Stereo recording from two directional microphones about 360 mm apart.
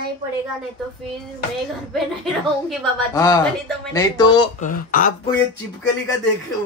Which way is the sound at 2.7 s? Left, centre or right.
Centre.